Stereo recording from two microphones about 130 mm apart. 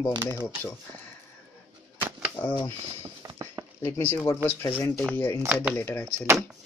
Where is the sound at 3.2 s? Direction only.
35° right (ahead or behind).